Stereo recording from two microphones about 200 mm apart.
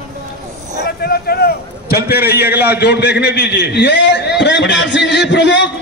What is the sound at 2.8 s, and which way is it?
A man's voice, 60° left (ahead or behind).